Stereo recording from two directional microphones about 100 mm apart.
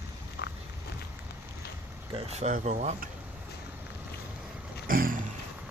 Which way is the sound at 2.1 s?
90° right.